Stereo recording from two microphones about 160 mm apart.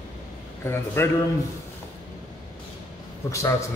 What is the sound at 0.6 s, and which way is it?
Speech, 15° left (ahead or behind).